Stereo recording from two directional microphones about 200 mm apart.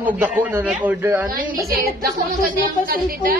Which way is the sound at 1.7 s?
45° right (ahead or behind).